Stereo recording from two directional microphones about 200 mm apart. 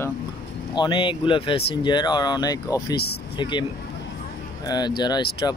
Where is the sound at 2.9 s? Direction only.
50° left (ahead or behind).